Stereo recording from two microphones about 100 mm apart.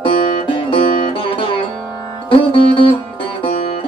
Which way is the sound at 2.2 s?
65° left (ahead or behind).